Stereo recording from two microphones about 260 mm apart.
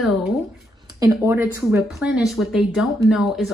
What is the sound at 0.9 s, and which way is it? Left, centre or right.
Speech, centre.